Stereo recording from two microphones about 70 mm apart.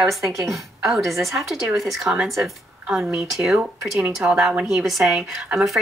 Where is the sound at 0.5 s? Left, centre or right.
Centre.